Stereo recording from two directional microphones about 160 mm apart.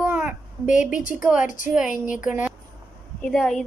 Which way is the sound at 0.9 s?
55° left (ahead or behind).